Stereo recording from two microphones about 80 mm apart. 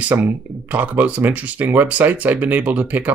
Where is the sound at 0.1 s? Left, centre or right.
Right.